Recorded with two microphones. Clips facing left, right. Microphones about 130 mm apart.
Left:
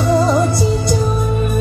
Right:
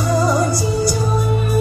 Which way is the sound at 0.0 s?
25° left (ahead or behind).